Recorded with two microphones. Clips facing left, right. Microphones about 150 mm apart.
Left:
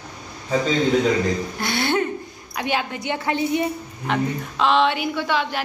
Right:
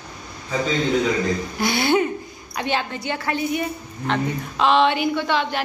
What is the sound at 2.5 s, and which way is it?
A woman's voice, 10° left (ahead or behind).